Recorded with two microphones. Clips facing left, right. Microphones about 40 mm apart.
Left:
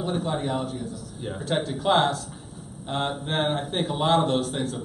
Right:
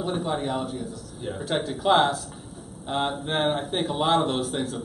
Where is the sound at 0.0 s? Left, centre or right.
Centre.